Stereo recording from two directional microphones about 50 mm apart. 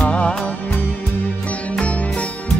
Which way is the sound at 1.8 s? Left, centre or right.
Left.